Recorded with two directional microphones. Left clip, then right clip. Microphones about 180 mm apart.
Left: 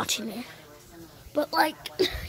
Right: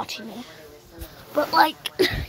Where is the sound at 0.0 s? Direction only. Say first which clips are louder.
Left 2 dB; 25° left (ahead or behind).